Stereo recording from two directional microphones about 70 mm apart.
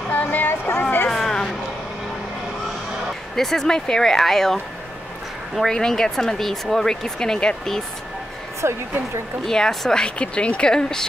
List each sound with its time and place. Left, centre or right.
0.1 s a sound: left
1.1 s a sound: centre
3.3 s speech: centre
5.6 s speech: centre
8.6 s a woman's voice: right
9.5 s speech: centre